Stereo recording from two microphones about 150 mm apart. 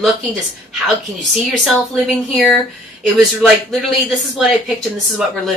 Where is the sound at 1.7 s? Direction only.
Centre (ahead or behind).